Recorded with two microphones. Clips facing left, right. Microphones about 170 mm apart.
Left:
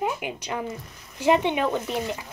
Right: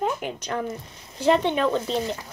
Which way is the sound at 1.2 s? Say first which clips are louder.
Right 1 dB; 15° left (ahead or behind).